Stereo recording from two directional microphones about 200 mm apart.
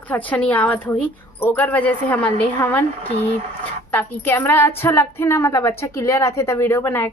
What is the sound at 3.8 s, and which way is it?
A woman's voice, 10° left (ahead or behind).